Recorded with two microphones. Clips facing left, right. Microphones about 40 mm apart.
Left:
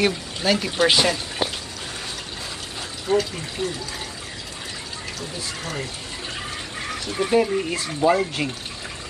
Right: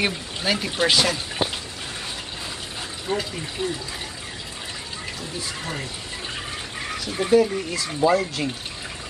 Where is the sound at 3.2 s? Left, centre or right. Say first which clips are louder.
Left 3 dB; centre.